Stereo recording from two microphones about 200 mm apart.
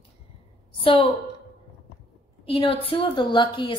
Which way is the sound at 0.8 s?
25° left (ahead or behind).